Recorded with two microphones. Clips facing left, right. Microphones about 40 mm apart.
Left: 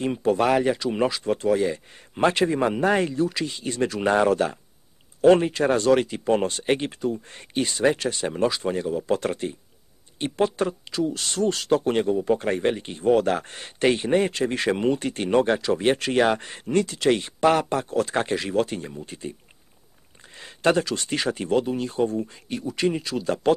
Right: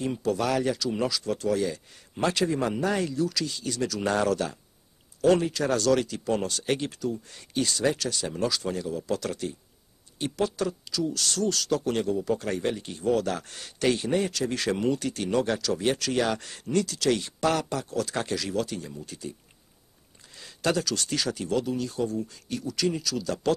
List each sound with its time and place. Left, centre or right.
0.0 s speech: left
20.3 s speech: left